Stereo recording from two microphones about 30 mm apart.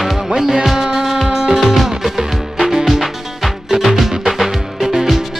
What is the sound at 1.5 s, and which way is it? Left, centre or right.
Music, centre.